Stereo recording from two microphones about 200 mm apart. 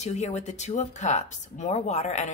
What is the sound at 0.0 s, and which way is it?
Speech, 35° left (ahead or behind).